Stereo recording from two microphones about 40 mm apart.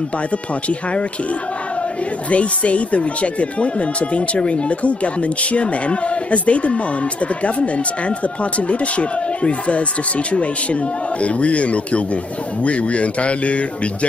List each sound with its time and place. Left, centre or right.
0.3 s speech: left